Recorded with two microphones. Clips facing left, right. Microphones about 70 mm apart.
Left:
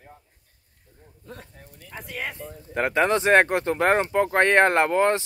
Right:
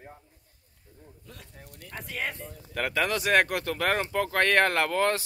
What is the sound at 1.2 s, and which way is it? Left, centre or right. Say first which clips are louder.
Speech: left 9 dB; left.